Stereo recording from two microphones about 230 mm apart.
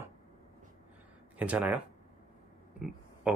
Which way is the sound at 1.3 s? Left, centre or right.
Centre.